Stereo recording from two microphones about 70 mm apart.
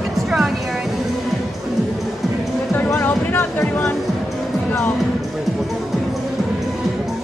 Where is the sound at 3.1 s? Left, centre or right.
Left.